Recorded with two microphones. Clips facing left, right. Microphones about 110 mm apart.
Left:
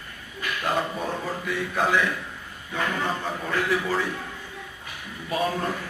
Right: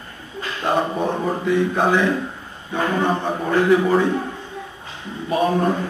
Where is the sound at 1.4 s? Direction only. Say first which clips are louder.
Right 8 dB; 30° right (ahead or behind).